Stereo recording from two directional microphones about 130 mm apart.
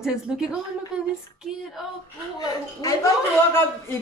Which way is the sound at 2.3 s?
30° left (ahead or behind).